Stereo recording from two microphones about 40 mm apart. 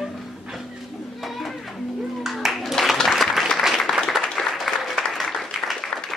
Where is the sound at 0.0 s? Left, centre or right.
Centre.